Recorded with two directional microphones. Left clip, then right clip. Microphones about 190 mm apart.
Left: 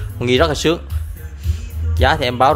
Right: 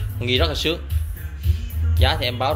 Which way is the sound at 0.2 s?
45° left (ahead or behind).